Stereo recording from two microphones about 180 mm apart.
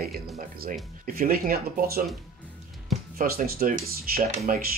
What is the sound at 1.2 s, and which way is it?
Speech, 55° right (ahead or behind).